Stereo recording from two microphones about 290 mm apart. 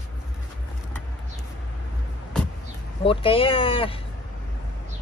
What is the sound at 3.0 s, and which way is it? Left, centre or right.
Speech, centre.